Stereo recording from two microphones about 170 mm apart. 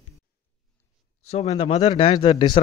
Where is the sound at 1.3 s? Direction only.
35° left (ahead or behind).